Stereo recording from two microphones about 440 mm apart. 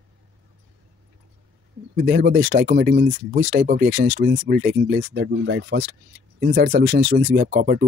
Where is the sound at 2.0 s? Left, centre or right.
Right.